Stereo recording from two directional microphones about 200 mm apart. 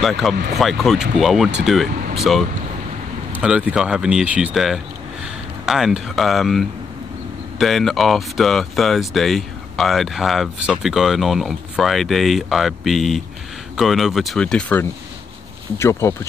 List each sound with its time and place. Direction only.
0.0 s speech: centre (ahead or behind)